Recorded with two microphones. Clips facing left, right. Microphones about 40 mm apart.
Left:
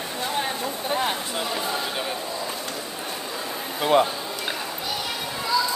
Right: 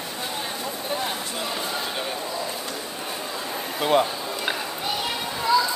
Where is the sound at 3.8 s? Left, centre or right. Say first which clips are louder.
Left 1 dB; centre.